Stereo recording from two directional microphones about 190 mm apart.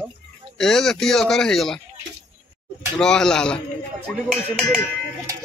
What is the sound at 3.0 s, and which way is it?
Speech, 5° left (ahead or behind).